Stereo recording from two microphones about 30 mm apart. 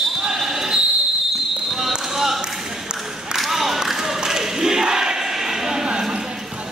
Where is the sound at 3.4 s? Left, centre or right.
Centre; by 6.2 s right.